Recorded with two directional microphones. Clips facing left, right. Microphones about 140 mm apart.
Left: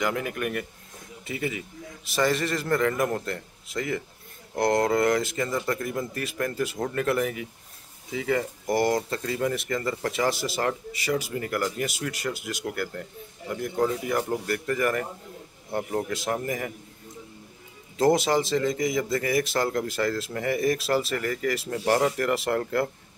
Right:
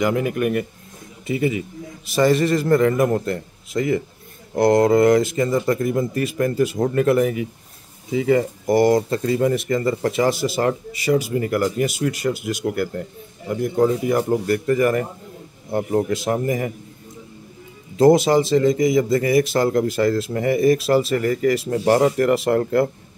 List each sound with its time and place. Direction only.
0.0 s a man's voice: 15° right (ahead or behind)
17.9 s a man's voice: 15° right (ahead or behind)